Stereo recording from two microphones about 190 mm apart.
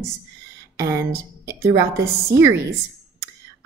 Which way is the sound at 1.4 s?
15° right (ahead or behind).